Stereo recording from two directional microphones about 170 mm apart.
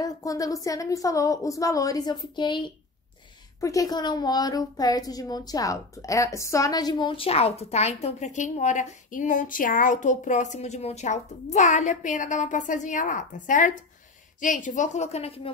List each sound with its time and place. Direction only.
0.0 s a woman's voice: 20° left (ahead or behind); by 15.5 s 35° left (ahead or behind)